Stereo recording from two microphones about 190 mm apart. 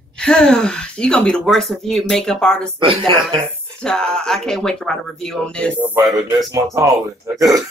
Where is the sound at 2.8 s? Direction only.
25° right (ahead or behind).